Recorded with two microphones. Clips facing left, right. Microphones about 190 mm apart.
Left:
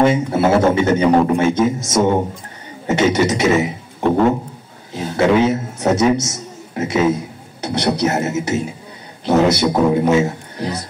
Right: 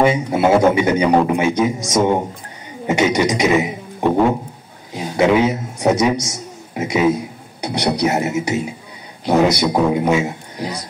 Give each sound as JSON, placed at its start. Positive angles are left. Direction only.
{"t": 0.0, "sound": "a man's voice", "side_deg": -15}
{"t": 2.9, "sound": "a sound", "side_deg": -15}
{"t": 4.9, "sound": "a man's voice", "side_deg": -15}